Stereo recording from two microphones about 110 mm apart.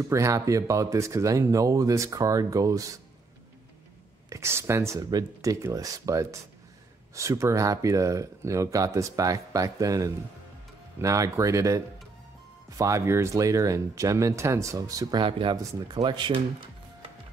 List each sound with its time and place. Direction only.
0.1 s speech: 30° right (ahead or behind)
4.3 s speech: 25° right (ahead or behind); by 16.4 s 50° right (ahead or behind)